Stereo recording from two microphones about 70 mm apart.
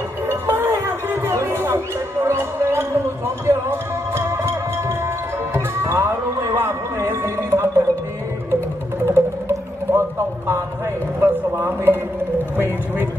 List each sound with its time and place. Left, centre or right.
0.3 s music: right
9.0 s music: right
11.1 s a sound: right
12.5 s clip-clop: right